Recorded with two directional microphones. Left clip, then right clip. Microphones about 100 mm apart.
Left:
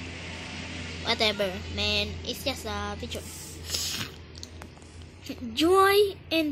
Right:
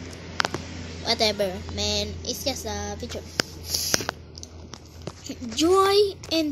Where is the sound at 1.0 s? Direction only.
20° right (ahead or behind).